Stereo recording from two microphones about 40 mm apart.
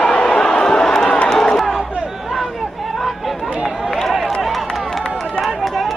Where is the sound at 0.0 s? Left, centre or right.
Centre.